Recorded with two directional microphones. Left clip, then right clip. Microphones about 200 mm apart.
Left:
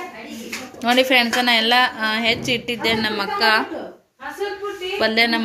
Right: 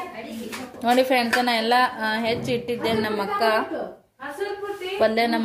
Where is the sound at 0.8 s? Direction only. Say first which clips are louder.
Left 3 dB; 5° right (ahead or behind).